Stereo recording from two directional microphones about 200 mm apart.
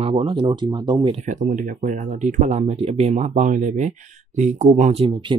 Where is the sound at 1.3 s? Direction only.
40° right (ahead or behind).